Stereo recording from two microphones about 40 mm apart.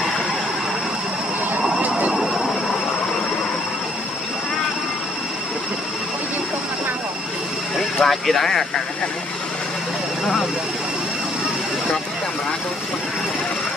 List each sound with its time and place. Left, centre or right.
2.1 s vehicle: centre
7.7 s vehicle: centre
10.2 s speech: centre